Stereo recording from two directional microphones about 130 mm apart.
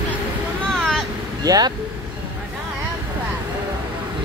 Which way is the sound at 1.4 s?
30° right (ahead or behind).